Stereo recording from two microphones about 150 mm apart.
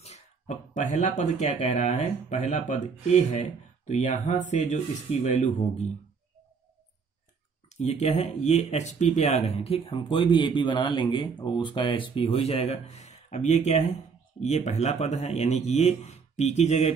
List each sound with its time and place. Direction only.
0.0 s speech: 50° left (ahead or behind)
7.7 s speech: 50° left (ahead or behind)